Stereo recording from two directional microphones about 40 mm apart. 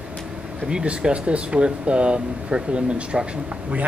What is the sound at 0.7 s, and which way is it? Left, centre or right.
Speech, right.